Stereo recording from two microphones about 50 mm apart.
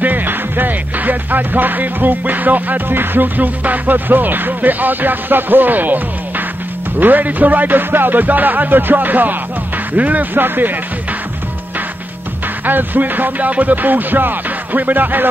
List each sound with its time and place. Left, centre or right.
0.0 s music: right
12.6 s music: right